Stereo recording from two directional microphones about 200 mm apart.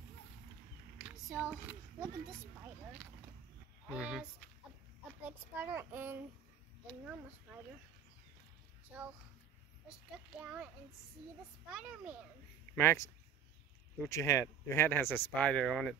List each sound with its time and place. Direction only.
1.0 s a sound: centre (ahead or behind)
3.8 s a child's voice: 5° right (ahead or behind)
9.8 s a child's voice: 5° right (ahead or behind)
11.7 s a child's voice: 5° right (ahead or behind)
12.7 s speech: 15° left (ahead or behind)